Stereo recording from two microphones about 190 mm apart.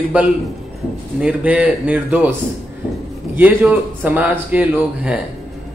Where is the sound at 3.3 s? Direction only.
10° right (ahead or behind).